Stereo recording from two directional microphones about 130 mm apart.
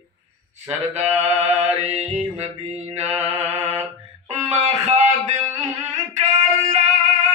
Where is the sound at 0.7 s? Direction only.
55° right (ahead or behind).